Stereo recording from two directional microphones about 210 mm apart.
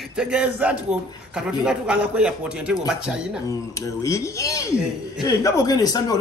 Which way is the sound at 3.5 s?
15° left (ahead or behind).